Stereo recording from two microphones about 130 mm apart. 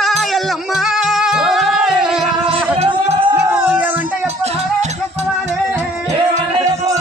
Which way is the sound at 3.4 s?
15° right (ahead or behind).